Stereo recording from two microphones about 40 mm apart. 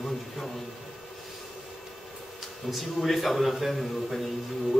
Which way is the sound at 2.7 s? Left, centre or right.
Centre.